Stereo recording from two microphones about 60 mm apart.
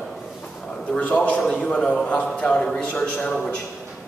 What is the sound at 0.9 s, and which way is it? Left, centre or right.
Speech, left.